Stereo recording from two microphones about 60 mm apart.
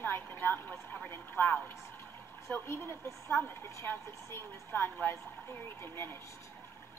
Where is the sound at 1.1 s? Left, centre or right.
Left.